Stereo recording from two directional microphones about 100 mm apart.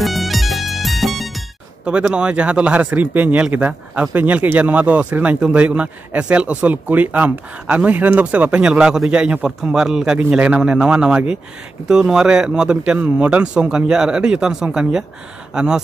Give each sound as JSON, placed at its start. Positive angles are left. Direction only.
{"t": 0.0, "sound": "music", "side_deg": 0}
{"t": 1.9, "sound": "speech", "side_deg": -10}